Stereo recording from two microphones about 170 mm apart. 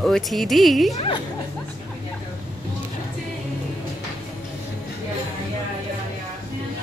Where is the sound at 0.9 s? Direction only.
35° left (ahead or behind).